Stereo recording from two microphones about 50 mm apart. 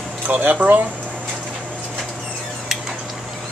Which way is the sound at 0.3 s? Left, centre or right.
Right.